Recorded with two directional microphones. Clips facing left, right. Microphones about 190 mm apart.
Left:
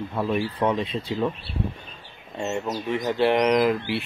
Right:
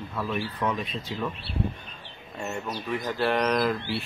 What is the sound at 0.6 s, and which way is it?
Speech, 30° left (ahead or behind).